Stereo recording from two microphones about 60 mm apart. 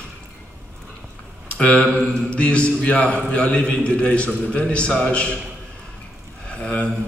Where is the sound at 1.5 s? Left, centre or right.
Left.